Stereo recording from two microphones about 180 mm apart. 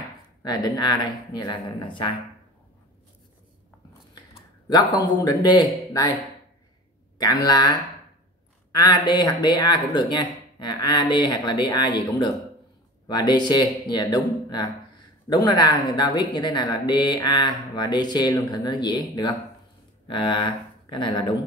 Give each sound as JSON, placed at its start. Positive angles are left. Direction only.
{"t": 0.4, "sound": "speech", "side_deg": 20}
{"t": 4.1, "sound": "a man's voice", "side_deg": 25}
{"t": 7.2, "sound": "speech", "side_deg": 20}